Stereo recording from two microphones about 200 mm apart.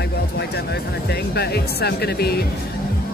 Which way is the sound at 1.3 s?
55° left (ahead or behind).